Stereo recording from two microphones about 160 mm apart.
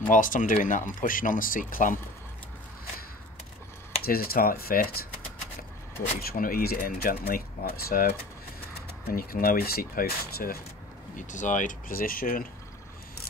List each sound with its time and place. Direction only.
0.1 s speech: 55° left (ahead or behind)
4.0 s speech: 70° left (ahead or behind)
6.2 s speech: 65° left (ahead or behind)
11.1 s speech: 50° left (ahead or behind)